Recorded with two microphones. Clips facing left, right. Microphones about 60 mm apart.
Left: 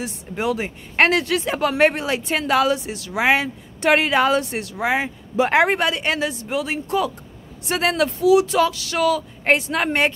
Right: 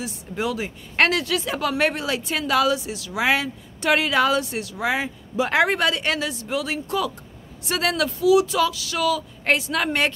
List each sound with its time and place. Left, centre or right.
0.0 s speech: left
3.2 s speech: left
4.8 s speech: left